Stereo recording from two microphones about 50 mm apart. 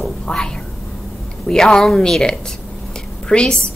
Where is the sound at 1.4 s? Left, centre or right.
Centre.